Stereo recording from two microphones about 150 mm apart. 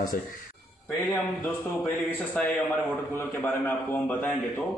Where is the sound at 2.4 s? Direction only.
10° left (ahead or behind).